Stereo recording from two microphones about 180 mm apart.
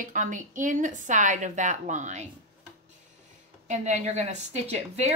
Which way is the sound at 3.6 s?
40° right (ahead or behind).